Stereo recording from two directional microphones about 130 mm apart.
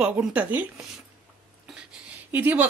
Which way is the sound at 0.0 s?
10° right (ahead or behind).